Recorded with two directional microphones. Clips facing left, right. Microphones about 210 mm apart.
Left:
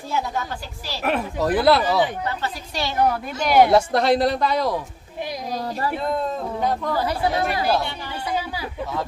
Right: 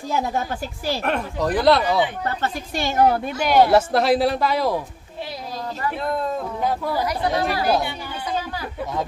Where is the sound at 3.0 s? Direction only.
30° right (ahead or behind).